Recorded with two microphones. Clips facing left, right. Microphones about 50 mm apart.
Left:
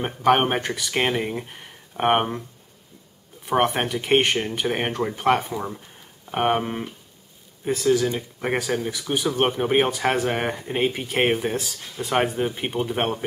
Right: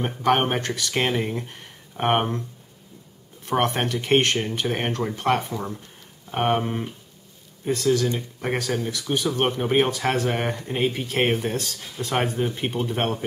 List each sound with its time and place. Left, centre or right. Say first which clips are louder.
0.2 s speech: left 2 dB; centre
3.4 s speech: left 2 dB; centre